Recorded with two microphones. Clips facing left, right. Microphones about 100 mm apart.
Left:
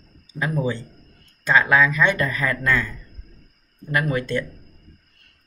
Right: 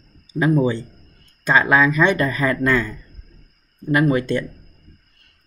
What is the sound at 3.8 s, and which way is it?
Speech, 20° right (ahead or behind).